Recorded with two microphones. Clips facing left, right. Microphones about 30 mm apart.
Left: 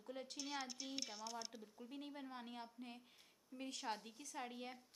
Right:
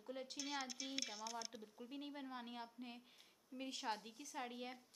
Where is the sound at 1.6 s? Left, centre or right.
Centre.